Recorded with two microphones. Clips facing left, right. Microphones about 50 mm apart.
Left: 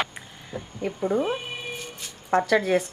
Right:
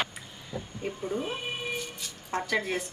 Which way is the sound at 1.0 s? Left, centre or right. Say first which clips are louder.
Left 9 dB; left.